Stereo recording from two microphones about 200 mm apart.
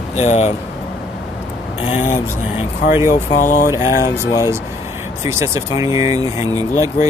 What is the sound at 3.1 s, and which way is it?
Speech, 40° left (ahead or behind).